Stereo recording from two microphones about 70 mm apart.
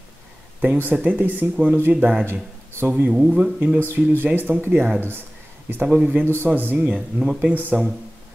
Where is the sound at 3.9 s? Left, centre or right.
Right.